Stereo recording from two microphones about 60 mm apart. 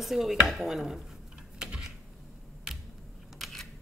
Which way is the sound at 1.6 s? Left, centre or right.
Centre.